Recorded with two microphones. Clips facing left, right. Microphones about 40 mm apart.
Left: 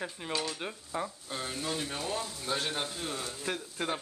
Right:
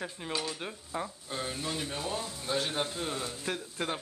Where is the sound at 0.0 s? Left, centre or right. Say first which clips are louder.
Left 1 dB; centre.